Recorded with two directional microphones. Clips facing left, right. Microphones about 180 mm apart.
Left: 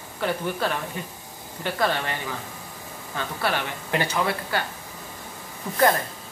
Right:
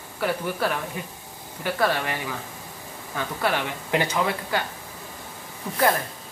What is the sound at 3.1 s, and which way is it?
Speech, 15° right (ahead or behind).